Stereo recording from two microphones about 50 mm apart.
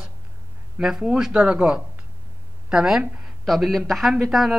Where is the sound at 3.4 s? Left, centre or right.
Centre.